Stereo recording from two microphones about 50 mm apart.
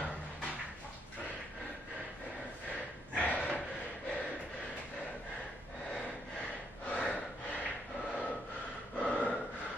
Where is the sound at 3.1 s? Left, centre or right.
Left.